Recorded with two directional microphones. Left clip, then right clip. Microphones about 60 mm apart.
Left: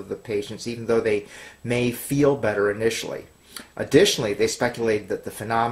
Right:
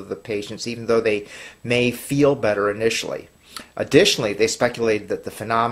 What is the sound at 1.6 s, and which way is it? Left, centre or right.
Speech, right.